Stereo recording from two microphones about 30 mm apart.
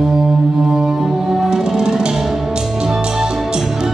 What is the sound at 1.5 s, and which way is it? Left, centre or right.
Music, right.